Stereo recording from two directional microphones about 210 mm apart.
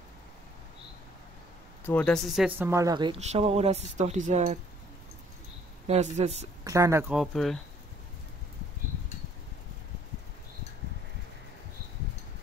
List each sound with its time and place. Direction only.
1.9 s speech: 5° left (ahead or behind); by 4.6 s 35° right (ahead or behind)
5.9 s speech: 30° right (ahead or behind)
6.6 s speech: 15° right (ahead or behind)
7.2 s speech: centre (ahead or behind)